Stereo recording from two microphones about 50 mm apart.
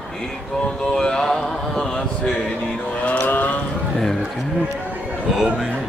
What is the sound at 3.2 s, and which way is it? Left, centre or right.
Vehicle, left.